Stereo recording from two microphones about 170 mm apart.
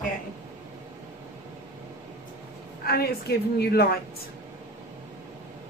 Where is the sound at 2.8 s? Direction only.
65° left (ahead or behind).